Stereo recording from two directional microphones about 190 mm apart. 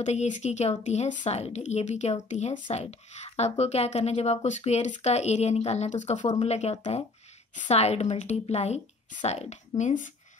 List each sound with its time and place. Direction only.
0.0 s speech: 35° left (ahead or behind)